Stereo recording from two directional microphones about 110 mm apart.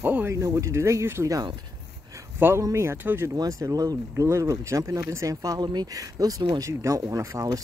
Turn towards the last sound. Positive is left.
turn(degrees=-30)  # may be behind; listen again after turning